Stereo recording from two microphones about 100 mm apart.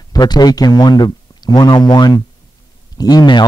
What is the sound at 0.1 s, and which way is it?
Speech, 45° left (ahead or behind).